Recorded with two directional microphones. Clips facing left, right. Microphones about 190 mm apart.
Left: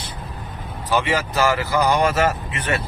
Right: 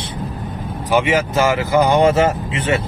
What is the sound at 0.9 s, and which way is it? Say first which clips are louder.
Speech: right 5 dB; 20° right (ahead or behind).